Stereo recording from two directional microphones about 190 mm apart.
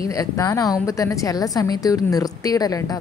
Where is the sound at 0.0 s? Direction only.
20° left (ahead or behind).